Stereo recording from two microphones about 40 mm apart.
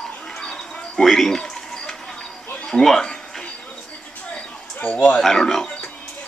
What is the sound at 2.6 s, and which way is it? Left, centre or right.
Speech, centre.